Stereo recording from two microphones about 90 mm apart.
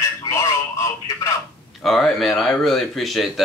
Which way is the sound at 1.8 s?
Centre (ahead or behind).